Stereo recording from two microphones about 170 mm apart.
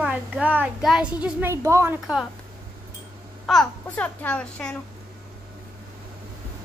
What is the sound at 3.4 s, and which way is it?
A child's voice, 5° left (ahead or behind).